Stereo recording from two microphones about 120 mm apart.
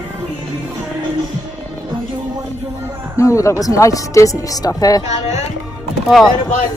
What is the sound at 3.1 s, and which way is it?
Speech, 25° left (ahead or behind).